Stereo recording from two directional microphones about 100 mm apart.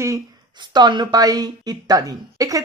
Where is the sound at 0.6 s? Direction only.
45° right (ahead or behind).